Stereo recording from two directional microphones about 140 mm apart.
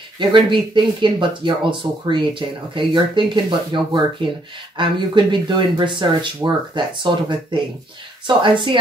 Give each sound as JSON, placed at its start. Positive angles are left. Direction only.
{"t": 0.2, "sound": "speech", "side_deg": -35}